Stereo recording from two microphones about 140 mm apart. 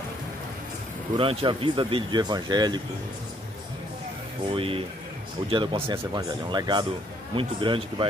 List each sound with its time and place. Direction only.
1.1 s speech: 40° right (ahead or behind)
4.5 s speech: 40° right (ahead or behind)